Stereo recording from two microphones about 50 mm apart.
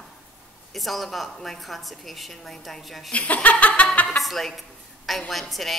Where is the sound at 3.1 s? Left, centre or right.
Left.